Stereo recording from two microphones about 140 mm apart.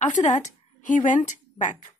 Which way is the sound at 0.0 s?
60° left (ahead or behind).